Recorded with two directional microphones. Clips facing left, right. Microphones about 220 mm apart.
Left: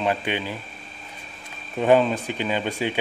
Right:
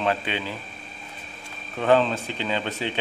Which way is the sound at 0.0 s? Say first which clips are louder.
Left 1 dB; 15° left (ahead or behind).